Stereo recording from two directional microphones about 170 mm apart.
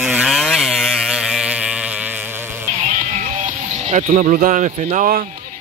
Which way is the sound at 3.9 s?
45° right (ahead or behind).